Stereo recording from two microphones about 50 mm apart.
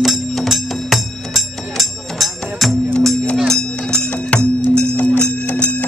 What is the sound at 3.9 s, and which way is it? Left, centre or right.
Music, left.